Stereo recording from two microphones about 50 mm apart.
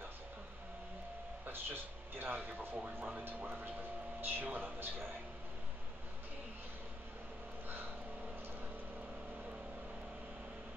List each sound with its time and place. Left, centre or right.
1.4 s a sound: right
2.9 s a man's voice: right
7.6 s vehicle: right